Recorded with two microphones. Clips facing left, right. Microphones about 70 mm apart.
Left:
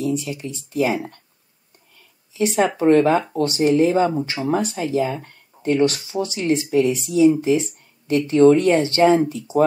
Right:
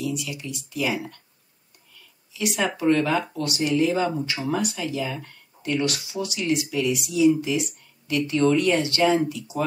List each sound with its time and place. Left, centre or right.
0.0 s speech: left
2.3 s speech: left